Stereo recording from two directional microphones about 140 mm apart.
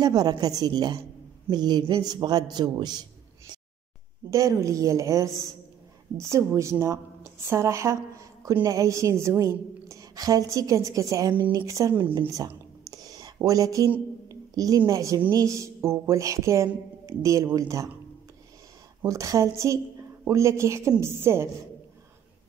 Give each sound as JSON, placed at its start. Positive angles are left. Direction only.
{"t": 0.0, "sound": "a woman's voice", "side_deg": -30}
{"t": 4.3, "sound": "a woman's voice", "side_deg": -20}
{"t": 12.3, "sound": "a sound", "side_deg": -25}
{"t": 14.9, "sound": "a woman's voice", "side_deg": -25}
{"t": 19.0, "sound": "a woman's voice", "side_deg": -25}